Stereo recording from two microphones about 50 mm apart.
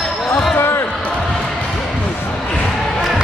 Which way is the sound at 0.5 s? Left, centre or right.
Left.